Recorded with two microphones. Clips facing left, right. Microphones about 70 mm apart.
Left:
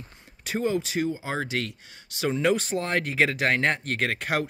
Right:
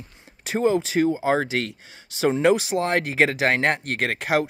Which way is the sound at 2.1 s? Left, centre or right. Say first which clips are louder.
Right 5 dB; right.